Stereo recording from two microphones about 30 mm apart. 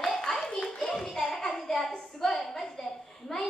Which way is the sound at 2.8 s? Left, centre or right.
Centre.